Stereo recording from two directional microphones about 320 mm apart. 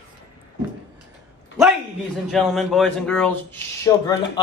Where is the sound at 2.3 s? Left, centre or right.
Centre.